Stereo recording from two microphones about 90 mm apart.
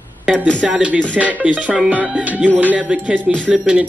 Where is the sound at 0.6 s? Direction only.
15° right (ahead or behind).